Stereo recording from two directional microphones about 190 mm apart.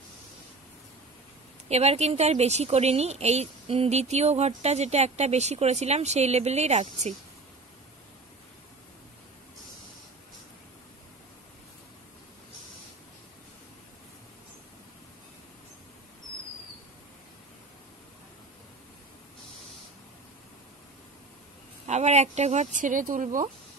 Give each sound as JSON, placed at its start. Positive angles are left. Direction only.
{"t": 1.7, "sound": "a woman's voice", "side_deg": -35}
{"t": 21.8, "sound": "speech", "side_deg": -35}